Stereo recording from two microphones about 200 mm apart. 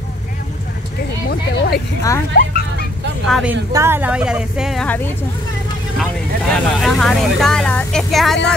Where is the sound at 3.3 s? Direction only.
5° right (ahead or behind).